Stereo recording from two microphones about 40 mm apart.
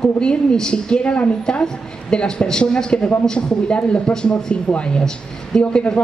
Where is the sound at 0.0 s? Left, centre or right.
Left.